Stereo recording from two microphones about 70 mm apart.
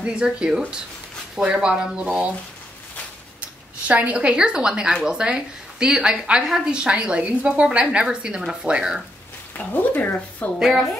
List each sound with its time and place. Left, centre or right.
0.0 s a woman's voice: centre
3.8 s a woman's voice: centre
9.6 s speech: left
10.6 s a woman's voice: centre